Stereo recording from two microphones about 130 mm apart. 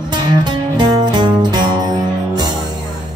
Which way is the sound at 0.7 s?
35° right (ahead or behind).